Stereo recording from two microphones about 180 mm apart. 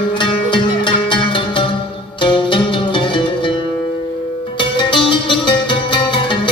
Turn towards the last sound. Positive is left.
turn(degrees=30)  # may be behind; listen again after turning